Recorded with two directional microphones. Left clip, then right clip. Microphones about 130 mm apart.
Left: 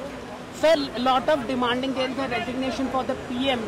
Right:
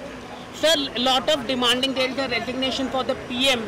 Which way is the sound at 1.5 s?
45° right (ahead or behind).